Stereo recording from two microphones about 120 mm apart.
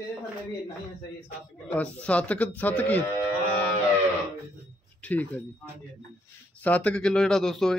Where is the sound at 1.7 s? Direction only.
10° left (ahead or behind).